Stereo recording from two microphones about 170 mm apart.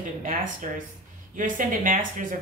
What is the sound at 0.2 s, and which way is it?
Speech, 50° right (ahead or behind).